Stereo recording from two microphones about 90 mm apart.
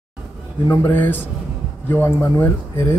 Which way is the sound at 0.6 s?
35° left (ahead or behind).